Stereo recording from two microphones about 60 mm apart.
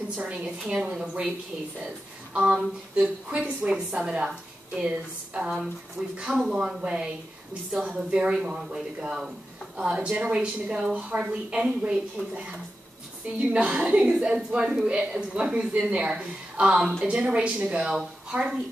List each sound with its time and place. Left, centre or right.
0.1 s a woman's voice: centre
2.3 s a woman's voice: right